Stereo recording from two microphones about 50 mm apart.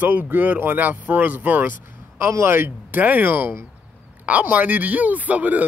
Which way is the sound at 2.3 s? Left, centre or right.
Right.